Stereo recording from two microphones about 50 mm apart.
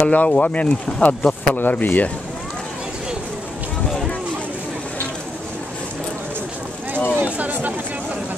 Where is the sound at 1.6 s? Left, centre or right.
Left.